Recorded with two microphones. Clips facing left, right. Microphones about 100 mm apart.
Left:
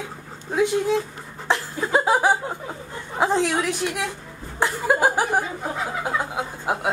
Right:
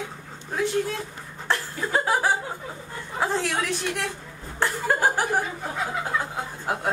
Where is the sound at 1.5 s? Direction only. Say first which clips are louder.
Left 4 dB; 15° left (ahead or behind).